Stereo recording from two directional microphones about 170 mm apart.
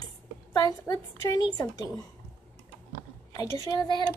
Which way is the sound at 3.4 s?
20° left (ahead or behind).